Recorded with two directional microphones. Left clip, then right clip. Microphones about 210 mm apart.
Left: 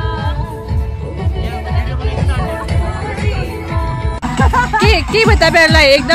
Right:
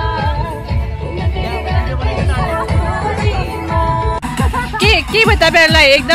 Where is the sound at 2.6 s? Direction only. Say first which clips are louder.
Right 4 dB; 15° right (ahead or behind).